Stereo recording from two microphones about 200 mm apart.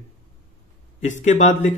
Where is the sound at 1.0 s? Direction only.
40° left (ahead or behind).